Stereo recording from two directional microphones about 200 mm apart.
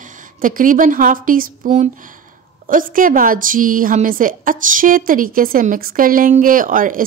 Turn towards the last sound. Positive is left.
turn(degrees=-40)  # may be behind; listen again after turning